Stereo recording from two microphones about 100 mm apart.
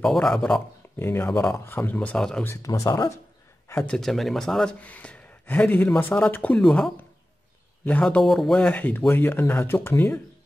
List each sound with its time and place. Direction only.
0.0 s speech: 5° left (ahead or behind)
0.9 s speech: 25° left (ahead or behind)
1.8 s speech: 15° left (ahead or behind)
2.4 s speech: 30° left (ahead or behind)
3.8 s speech: 5° left (ahead or behind)
8.5 s speech: 15° left (ahead or behind)